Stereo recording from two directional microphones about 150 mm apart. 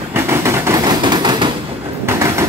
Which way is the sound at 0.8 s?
30° right (ahead or behind).